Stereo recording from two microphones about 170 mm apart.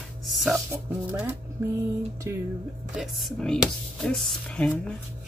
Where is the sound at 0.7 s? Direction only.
10° right (ahead or behind).